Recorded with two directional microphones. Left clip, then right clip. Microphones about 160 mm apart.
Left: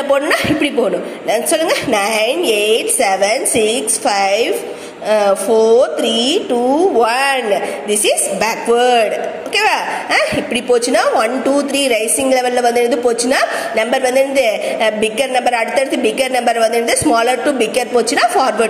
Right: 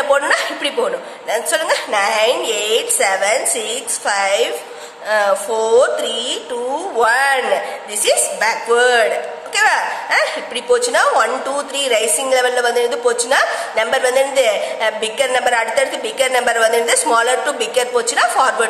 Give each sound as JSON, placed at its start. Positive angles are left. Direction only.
{"t": 0.1, "sound": "a woman's voice", "side_deg": 10}
{"t": 6.1, "sound": "speech", "side_deg": 50}
{"t": 6.7, "sound": "a woman's voice", "side_deg": 10}
{"t": 8.4, "sound": "a woman's voice", "side_deg": 10}